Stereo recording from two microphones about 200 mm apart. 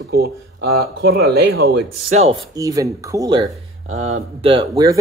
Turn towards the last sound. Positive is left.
turn(degrees=-20)  # may be behind; listen again after turning